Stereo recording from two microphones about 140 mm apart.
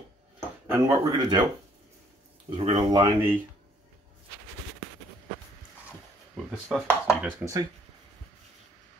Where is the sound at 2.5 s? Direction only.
45° right (ahead or behind).